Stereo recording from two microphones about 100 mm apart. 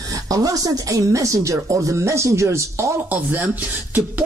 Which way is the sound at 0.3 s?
35° right (ahead or behind).